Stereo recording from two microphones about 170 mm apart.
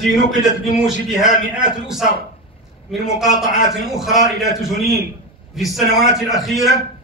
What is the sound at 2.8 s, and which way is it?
A man's voice, centre (ahead or behind).